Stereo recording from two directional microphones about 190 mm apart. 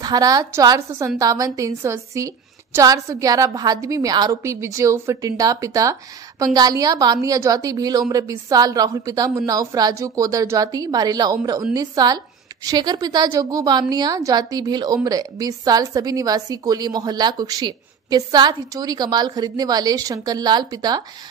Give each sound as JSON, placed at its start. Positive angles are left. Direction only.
{"t": 0.0, "sound": "a woman's voice", "side_deg": -20}